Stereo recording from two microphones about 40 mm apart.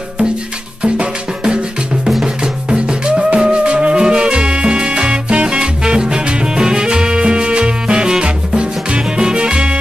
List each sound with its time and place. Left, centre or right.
0.8 s music: right